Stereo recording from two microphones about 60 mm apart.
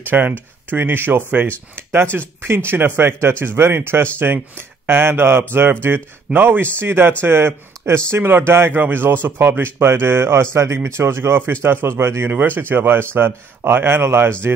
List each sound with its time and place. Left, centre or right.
0.0 s a man's voice: right